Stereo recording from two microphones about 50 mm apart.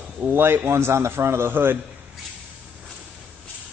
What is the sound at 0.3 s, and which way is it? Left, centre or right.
A man's voice, right.